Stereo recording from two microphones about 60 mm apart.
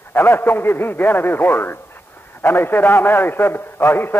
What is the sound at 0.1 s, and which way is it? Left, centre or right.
A man's voice, left.